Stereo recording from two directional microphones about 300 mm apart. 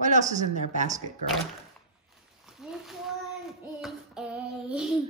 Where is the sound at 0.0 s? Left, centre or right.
Right.